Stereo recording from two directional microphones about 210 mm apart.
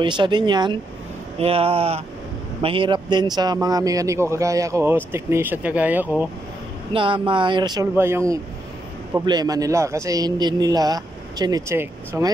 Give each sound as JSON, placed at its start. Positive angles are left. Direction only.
{"t": 0.0, "sound": "a man's voice", "side_deg": -20}
{"t": 6.9, "sound": "a man's voice", "side_deg": -25}